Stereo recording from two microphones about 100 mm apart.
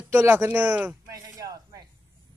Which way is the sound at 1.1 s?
35° right (ahead or behind).